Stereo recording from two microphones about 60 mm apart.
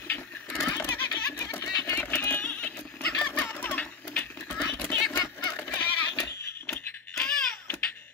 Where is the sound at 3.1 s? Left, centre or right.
Left.